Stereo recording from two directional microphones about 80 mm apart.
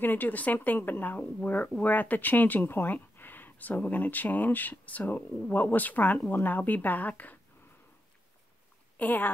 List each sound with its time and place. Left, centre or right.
0.0 s speech: left
8.9 s speech: left